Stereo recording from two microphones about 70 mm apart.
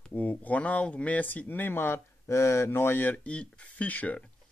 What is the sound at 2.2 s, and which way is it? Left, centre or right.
Speech, left.